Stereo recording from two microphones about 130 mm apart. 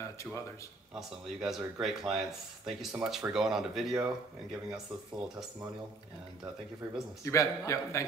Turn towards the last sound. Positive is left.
turn(degrees=25)  # may be behind; listen again after turning